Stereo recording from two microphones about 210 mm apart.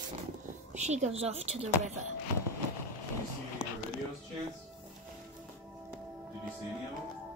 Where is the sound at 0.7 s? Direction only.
35° right (ahead or behind).